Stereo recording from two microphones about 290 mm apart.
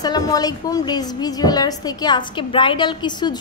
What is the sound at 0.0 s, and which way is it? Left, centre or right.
A woman's voice, centre.